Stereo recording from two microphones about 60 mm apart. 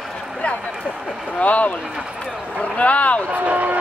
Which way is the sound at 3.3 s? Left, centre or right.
Right.